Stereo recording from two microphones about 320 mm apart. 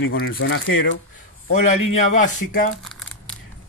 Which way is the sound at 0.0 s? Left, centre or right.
Left.